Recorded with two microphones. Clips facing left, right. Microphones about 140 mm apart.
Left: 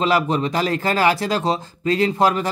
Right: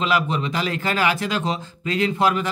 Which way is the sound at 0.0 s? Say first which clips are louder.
Left 3 dB; 40° left (ahead or behind).